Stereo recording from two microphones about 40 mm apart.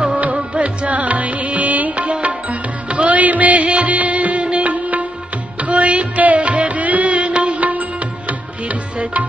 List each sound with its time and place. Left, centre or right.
0.0 s music: right